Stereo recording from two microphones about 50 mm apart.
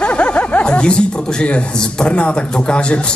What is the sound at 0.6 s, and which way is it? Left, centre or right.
Speech, centre.